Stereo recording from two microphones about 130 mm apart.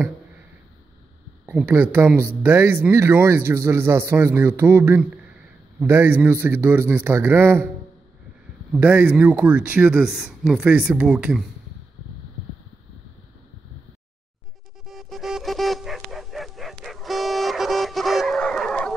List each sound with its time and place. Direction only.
1.4 s speech: 10° right (ahead or behind)
8.7 s speech: 10° right (ahead or behind)
14.9 s music: centre (ahead or behind)